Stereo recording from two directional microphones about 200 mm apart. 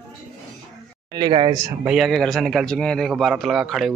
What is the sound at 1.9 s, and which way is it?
A man's voice, centre (ahead or behind).